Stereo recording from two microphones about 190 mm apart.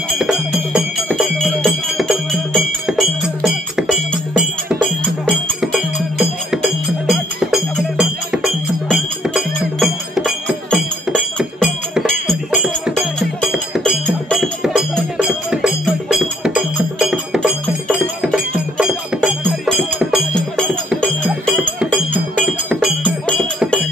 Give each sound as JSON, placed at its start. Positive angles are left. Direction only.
{"t": 0.1, "sound": "music", "side_deg": -5}
{"t": 22.4, "sound": "music", "side_deg": 0}